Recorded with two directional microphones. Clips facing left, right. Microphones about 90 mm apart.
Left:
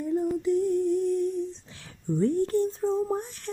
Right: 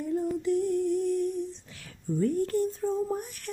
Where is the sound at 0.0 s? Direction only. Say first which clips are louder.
Left 2 dB; 20° left (ahead or behind).